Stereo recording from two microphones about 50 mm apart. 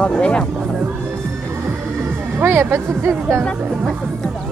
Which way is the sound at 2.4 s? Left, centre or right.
Right.